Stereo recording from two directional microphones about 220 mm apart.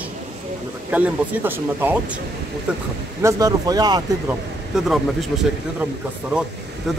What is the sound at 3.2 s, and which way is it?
Speech, 15° right (ahead or behind).